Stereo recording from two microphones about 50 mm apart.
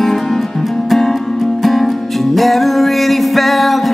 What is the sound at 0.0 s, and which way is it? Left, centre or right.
Music, centre.